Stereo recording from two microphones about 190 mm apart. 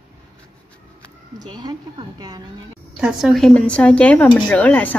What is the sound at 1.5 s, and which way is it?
Speech, 20° right (ahead or behind).